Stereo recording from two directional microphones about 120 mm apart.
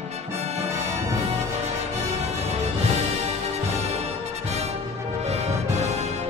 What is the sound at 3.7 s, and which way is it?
Music, 65° right (ahead or behind).